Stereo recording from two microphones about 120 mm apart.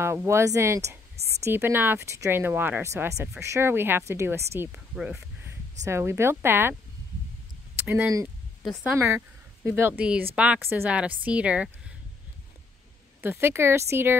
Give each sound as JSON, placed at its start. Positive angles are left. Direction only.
{"t": 0.0, "sound": "speech", "side_deg": -20}
{"t": 4.6, "sound": "speech", "side_deg": -10}
{"t": 5.4, "sound": "speech", "side_deg": -20}
{"t": 7.7, "sound": "a sound", "side_deg": -15}
{"t": 8.9, "sound": "speech", "side_deg": -20}
{"t": 13.2, "sound": "speech", "side_deg": -20}